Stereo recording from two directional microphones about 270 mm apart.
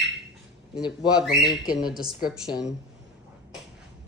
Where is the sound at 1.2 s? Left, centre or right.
Centre.